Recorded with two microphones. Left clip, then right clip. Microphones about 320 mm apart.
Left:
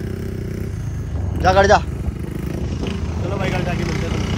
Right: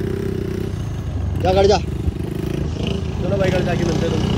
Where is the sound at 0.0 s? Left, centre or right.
Centre.